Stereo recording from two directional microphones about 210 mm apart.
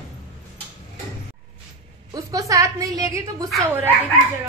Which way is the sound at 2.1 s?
15° right (ahead or behind).